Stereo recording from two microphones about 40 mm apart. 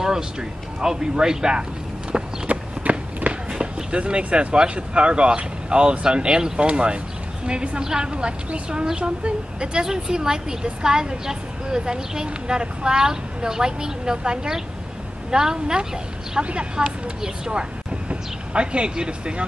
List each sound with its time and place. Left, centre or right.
0.0 s a woman's voice: centre
2.1 s run: right
3.5 s a woman's voice: right